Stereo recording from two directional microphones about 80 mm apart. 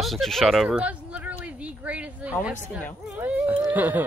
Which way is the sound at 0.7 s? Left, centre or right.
Centre.